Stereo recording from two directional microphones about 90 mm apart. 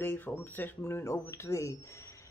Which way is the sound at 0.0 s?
25° left (ahead or behind).